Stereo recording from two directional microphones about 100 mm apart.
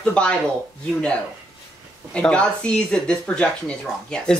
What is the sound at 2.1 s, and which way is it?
Speech, 10° left (ahead or behind).